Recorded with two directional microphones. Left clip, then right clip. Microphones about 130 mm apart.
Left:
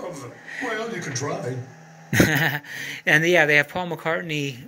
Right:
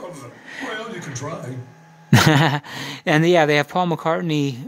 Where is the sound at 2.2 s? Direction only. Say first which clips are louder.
Right 4 dB; 40° right (ahead or behind).